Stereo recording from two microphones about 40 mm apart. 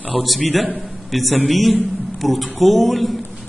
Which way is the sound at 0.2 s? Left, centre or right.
Centre.